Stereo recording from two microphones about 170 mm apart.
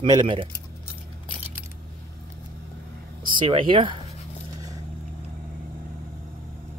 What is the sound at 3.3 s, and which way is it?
Speech, 30° right (ahead or behind).